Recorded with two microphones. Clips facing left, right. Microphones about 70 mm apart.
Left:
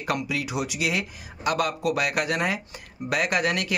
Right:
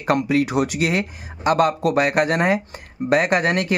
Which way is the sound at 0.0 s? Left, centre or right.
Right.